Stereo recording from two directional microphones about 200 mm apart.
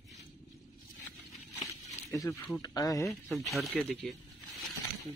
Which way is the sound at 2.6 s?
20° left (ahead or behind).